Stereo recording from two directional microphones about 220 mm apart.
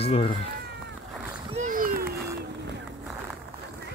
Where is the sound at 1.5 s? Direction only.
35° right (ahead or behind).